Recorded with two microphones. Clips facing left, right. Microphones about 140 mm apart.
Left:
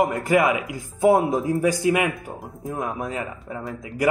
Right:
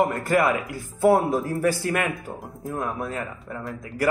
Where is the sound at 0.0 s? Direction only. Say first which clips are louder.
Left 2 dB; 15° left (ahead or behind).